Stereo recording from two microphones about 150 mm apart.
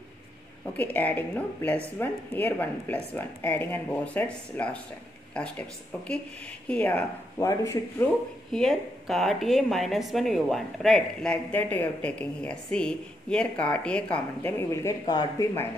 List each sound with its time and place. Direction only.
0.7 s a woman's voice: 10° left (ahead or behind)
8.5 s a woman's voice: centre (ahead or behind); by 15.7 s 20° left (ahead or behind)